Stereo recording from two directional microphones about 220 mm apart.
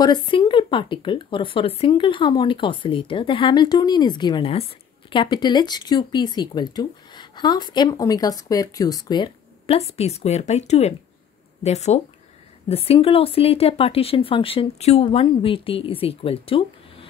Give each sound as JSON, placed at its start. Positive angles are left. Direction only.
{"t": 0.0, "sound": "speech", "side_deg": 20}